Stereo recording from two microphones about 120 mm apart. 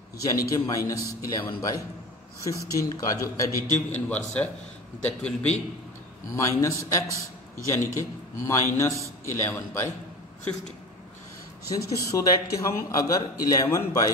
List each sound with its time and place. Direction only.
0.2 s a man's voice: 30° left (ahead or behind)
4.1 s a man's voice: 10° left (ahead or behind)
6.3 s a man's voice: 25° left (ahead or behind)
11.7 s a man's voice: 30° left (ahead or behind)